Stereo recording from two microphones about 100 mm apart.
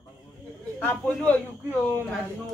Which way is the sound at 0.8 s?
15° left (ahead or behind).